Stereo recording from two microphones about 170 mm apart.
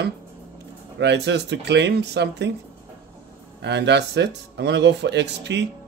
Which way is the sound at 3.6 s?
85° right.